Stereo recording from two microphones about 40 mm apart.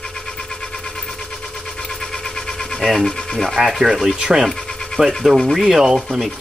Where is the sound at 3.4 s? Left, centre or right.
Centre.